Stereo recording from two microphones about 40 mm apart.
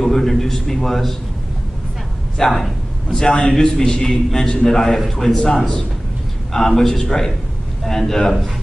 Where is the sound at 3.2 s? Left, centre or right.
Centre.